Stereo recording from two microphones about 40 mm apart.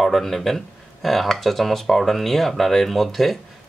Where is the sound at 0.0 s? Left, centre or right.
Centre.